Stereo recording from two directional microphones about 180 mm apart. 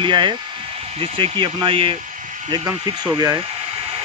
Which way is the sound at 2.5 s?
20° right (ahead or behind).